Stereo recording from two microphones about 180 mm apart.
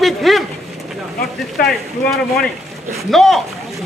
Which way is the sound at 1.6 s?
55° left (ahead or behind).